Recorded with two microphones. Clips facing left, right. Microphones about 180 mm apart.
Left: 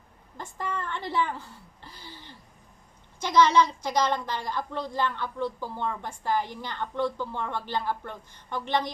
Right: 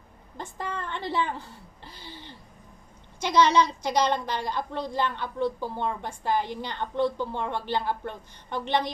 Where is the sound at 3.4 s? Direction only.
20° right (ahead or behind).